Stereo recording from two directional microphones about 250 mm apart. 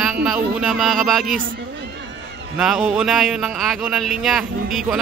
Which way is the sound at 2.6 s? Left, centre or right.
Centre.